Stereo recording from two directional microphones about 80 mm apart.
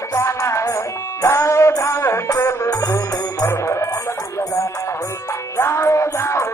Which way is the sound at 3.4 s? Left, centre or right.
Left.